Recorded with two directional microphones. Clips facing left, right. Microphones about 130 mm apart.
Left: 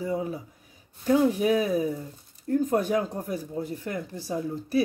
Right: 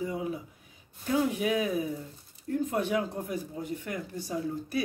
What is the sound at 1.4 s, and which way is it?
Speech, 35° left (ahead or behind).